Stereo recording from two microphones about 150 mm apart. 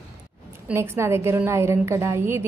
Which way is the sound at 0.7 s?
15° right (ahead or behind).